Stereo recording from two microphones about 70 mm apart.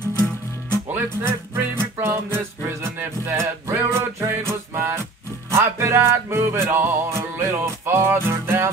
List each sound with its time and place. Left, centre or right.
0.7 s music: right